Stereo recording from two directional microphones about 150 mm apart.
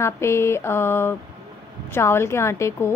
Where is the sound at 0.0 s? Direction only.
15° left (ahead or behind).